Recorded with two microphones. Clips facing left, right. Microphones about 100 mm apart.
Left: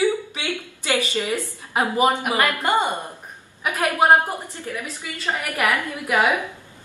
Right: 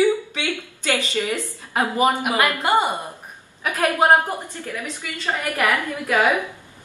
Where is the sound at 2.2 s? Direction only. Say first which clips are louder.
Right 1 dB; 15° right (ahead or behind).